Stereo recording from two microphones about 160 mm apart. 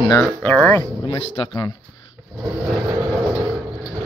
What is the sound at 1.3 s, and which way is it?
Speech, 30° left (ahead or behind).